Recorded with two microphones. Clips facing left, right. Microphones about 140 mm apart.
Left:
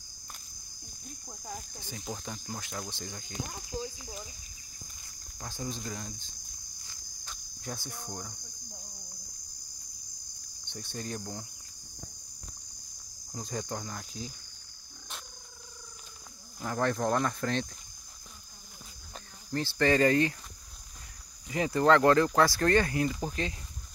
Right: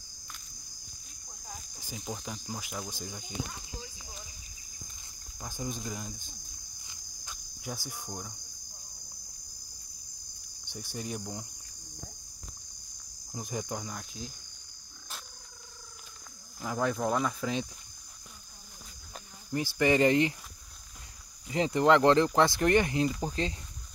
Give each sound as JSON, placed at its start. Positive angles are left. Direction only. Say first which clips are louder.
{"t": 1.0, "sound": "cricket", "louder": "left 6 dB", "side_deg": 50}
{"t": 1.8, "sound": "speech", "louder": "even", "side_deg": -10}
{"t": 5.4, "sound": "speech", "louder": "right 1 dB", "side_deg": -10}
{"t": 6.8, "sound": "insect", "louder": "left 1 dB", "side_deg": -15}
{"t": 7.9, "sound": "speech", "louder": "even", "side_deg": -15}
{"t": 10.7, "sound": "speech", "louder": "even", "side_deg": -10}
{"t": 13.3, "sound": "speech", "louder": "even", "side_deg": -15}
{"t": 16.6, "sound": "speech", "louder": "left 1 dB", "side_deg": -5}
{"t": 19.1, "sound": "speech", "louder": "even", "side_deg": -10}
{"t": 21.5, "sound": "speech", "louder": "even", "side_deg": -25}
{"t": 23.4, "sound": "speech", "louder": "right 3 dB", "side_deg": -30}